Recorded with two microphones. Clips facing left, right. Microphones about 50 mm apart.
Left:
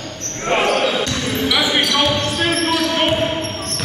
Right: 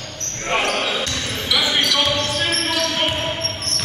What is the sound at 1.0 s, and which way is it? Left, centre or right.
Basketball bounce, centre.